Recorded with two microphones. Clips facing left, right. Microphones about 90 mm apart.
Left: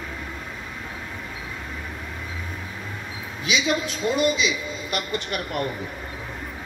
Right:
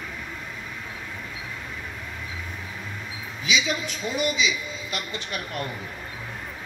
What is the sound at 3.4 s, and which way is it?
A man's voice, 50° left (ahead or behind).